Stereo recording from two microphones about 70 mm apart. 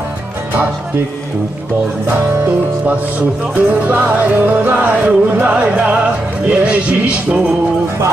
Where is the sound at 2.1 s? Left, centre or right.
Right.